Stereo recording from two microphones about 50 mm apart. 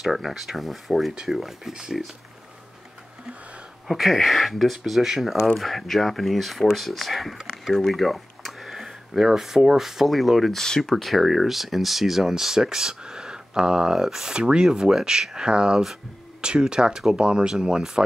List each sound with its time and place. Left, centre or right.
0.0 s speech: centre
3.8 s speech: centre